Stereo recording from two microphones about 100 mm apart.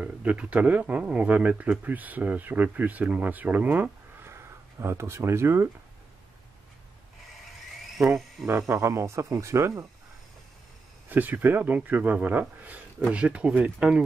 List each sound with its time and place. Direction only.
0.0 s speech: 10° right (ahead or behind)
8.5 s speech: 25° right (ahead or behind)
11.1 s speech: 20° right (ahead or behind)